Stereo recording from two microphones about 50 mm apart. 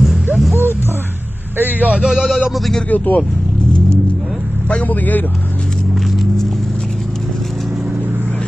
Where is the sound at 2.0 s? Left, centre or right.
Centre.